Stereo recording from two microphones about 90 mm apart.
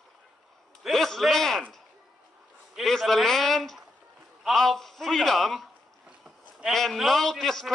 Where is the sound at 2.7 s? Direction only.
Centre (ahead or behind).